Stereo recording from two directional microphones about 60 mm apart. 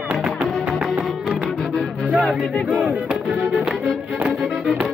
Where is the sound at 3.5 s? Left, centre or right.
Centre.